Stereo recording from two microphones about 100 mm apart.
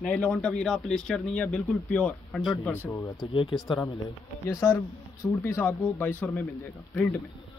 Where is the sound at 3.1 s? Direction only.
60° left (ahead or behind).